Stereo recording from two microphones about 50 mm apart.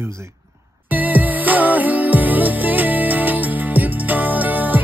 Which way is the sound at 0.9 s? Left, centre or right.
Right.